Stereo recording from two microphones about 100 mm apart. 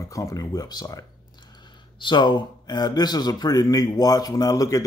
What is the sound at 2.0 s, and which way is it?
Speech, 50° left (ahead or behind).